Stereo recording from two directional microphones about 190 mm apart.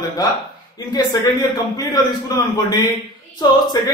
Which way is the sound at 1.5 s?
20° left (ahead or behind).